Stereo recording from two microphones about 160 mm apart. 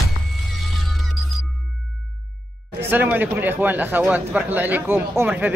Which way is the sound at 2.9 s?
10° right (ahead or behind).